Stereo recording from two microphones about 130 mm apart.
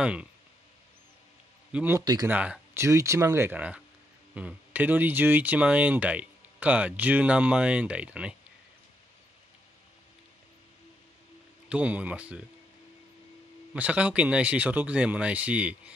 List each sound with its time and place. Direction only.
0.0 s speech: 10° right (ahead or behind)
1.7 s speech: 10° right (ahead or behind)
2.0 s speech: 30° right (ahead or behind)
2.2 s speech: 10° right (ahead or behind)
2.8 s speech: 20° right (ahead or behind)
11.7 s speech: 10° right (ahead or behind)
13.7 s speech: 10° right (ahead or behind)